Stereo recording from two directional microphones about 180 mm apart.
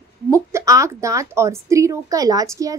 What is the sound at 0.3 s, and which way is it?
A woman's voice, 15° right (ahead or behind).